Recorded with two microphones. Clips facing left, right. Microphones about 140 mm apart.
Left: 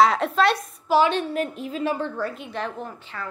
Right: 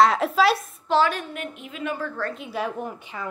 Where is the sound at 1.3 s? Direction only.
35° left (ahead or behind).